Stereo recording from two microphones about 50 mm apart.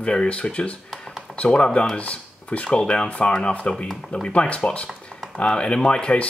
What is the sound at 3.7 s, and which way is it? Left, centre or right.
Speech, centre.